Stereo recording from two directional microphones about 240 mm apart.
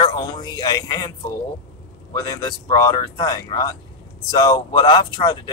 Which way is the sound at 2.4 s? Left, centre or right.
Centre.